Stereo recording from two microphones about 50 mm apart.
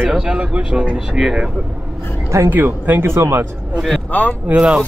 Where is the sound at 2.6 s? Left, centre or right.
Right.